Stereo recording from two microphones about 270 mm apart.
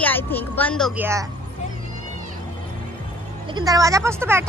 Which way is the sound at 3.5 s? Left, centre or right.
Centre.